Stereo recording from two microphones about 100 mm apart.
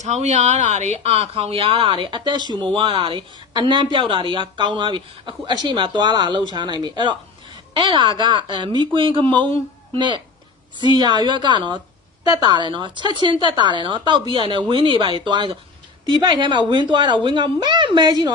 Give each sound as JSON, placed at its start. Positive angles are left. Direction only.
{"t": 0.1, "sound": "speech", "side_deg": -90}
{"t": 8.7, "sound": "speech", "side_deg": -60}